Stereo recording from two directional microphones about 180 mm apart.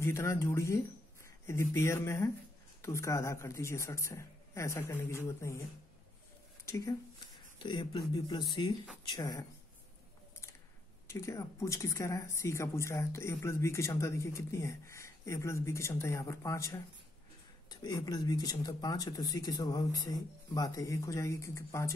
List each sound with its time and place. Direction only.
0.0 s speech: 15° left (ahead or behind)
6.6 s speech: 15° left (ahead or behind)
11.1 s speech: 15° left (ahead or behind)